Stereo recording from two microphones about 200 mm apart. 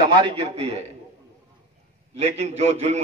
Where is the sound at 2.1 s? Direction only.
35° right (ahead or behind).